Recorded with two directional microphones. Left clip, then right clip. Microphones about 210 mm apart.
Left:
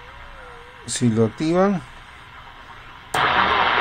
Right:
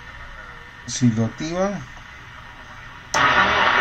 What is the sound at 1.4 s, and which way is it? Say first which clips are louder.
Speech: left 6 dB; 55° left (ahead or behind).